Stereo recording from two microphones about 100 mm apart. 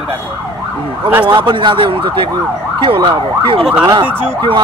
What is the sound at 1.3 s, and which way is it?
Speech, 55° right (ahead or behind).